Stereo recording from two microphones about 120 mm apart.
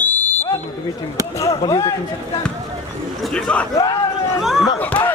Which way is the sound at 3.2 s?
5° left (ahead or behind).